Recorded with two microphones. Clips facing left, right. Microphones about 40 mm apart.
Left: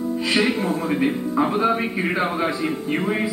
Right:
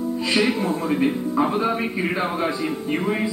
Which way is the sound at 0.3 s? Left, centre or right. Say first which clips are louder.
Even; centre.